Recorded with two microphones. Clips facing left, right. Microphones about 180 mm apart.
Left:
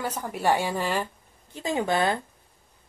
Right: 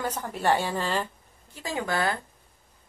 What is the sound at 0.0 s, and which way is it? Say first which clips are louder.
A woman's voice: left 1 dB; 10° left (ahead or behind).